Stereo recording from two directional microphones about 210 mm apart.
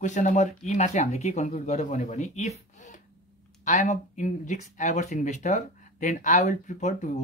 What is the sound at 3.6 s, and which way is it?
Speech, 35° left (ahead or behind).